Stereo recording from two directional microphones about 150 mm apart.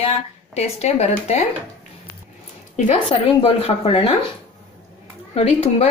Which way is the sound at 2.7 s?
50° left (ahead or behind).